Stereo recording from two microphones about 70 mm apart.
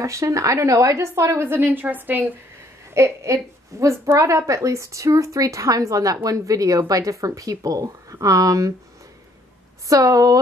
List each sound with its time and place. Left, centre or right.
0.0 s speech: right
2.9 s speech: right
9.8 s speech: right